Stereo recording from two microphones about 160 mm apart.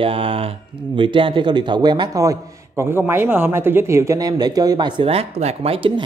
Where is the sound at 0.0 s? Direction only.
35° right (ahead or behind).